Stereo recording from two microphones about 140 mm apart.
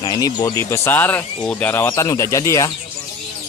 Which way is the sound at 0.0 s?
30° left (ahead or behind).